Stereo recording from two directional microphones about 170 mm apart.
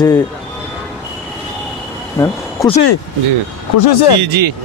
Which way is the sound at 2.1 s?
20° left (ahead or behind).